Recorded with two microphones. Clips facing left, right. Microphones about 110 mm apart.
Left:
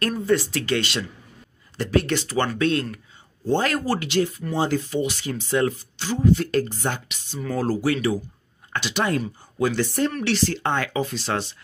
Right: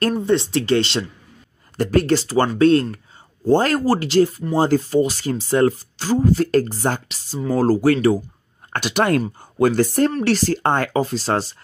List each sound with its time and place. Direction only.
0.1 s speech: 25° right (ahead or behind)
1.8 s speech: 45° right (ahead or behind)